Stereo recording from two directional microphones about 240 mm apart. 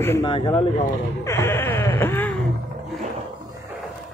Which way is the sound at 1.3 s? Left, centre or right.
Centre.